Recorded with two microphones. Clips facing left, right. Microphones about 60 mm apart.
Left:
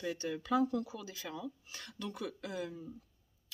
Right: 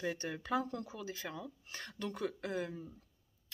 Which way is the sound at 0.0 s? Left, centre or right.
Right.